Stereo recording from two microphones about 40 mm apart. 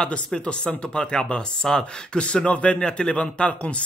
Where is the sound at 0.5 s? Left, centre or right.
Centre.